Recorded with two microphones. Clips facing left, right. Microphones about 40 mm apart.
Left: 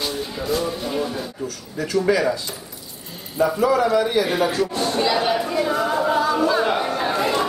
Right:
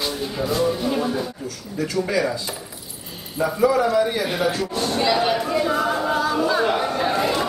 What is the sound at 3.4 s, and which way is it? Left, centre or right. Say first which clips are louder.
A man's voice: left 1 dB; centre.